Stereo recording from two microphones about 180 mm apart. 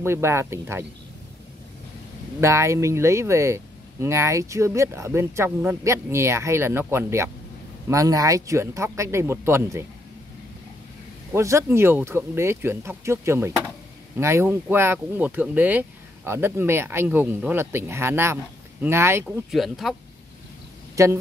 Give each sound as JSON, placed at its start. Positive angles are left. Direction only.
{"t": 0.0, "sound": "speech", "side_deg": -15}
{"t": 2.4, "sound": "speech", "side_deg": -15}
{"t": 11.3, "sound": "speech", "side_deg": -15}
{"t": 19.2, "sound": "speech", "side_deg": 0}
{"t": 20.9, "sound": "speech", "side_deg": -15}